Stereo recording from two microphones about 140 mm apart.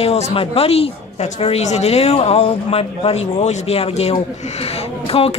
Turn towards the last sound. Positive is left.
turn(degrees=45)  # may be behind; listen again after turning